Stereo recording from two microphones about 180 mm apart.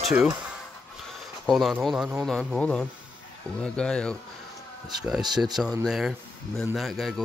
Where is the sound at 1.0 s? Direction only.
Centre (ahead or behind).